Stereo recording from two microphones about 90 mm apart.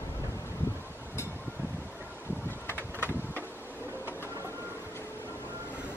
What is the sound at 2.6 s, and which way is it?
Bee, 25° left (ahead or behind).